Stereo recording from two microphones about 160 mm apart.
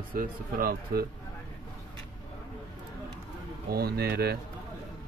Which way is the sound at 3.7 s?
75° right (ahead or behind).